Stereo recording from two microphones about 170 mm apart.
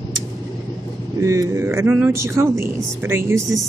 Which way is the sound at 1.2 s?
15° right (ahead or behind).